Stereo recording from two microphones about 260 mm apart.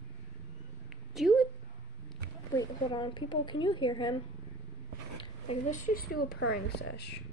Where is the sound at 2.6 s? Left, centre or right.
Centre.